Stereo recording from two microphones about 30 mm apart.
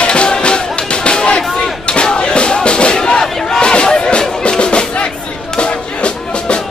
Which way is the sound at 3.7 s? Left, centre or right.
Left.